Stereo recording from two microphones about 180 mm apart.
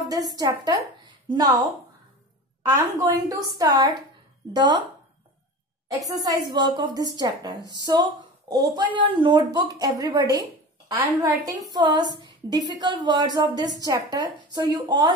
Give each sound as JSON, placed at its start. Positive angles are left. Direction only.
{"t": 0.1, "sound": "a woman's voice", "side_deg": -20}
{"t": 6.3, "sound": "a woman's voice", "side_deg": -25}